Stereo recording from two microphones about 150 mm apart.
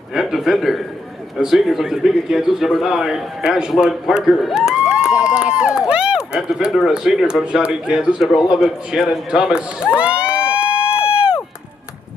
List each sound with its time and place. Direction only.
0.1 s speech: centre (ahead or behind)
9.9 s a sound: 5° right (ahead or behind)
10.9 s run: 40° left (ahead or behind)